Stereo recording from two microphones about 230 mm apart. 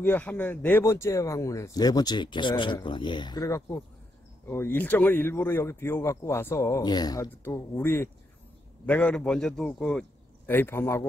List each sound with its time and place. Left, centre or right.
0.0 s a man's voice: centre